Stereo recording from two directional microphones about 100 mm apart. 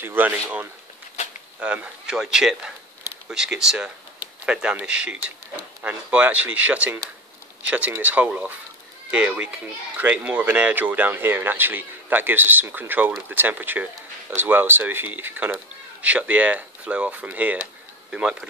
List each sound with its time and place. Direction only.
0.0 s speech: 20° right (ahead or behind)